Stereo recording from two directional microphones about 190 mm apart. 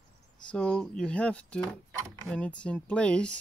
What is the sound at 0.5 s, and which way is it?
Speech, 5° left (ahead or behind).